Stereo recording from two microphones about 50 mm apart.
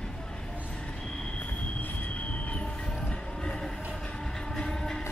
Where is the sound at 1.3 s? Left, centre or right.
Left; by 5.0 s centre.